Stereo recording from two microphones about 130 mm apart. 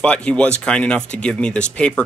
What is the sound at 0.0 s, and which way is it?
Speech, 10° left (ahead or behind).